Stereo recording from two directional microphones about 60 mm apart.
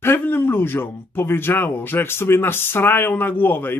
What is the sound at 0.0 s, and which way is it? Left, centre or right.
Speech, left.